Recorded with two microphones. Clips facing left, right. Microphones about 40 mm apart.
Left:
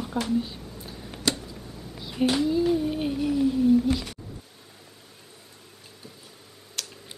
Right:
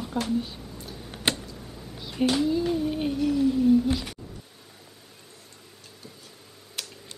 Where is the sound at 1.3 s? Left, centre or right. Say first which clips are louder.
Even; right.